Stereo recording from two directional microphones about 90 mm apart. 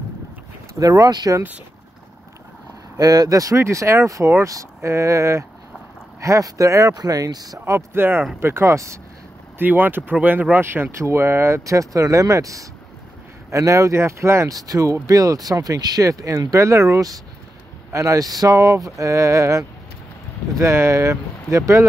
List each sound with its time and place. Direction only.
0.7 s speech: 40° right (ahead or behind)
3.0 s speech: 45° right (ahead or behind)
9.6 s speech: 20° right (ahead or behind)